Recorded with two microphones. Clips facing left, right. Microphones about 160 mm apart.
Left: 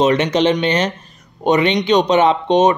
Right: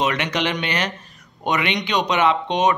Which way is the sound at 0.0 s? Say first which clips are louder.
Left 8 dB; 30° left (ahead or behind).